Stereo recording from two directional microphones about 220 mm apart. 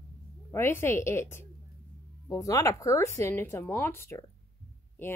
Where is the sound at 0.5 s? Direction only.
10° left (ahead or behind).